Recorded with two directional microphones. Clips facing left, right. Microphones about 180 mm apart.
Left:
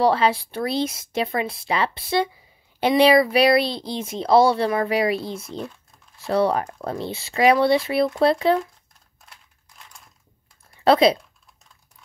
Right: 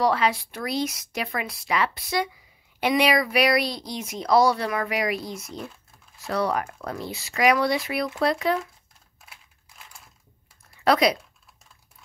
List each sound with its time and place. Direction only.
0.0 s speech: 30° left (ahead or behind)
9.2 s typing: 5° right (ahead or behind)
10.8 s speech: 25° left (ahead or behind)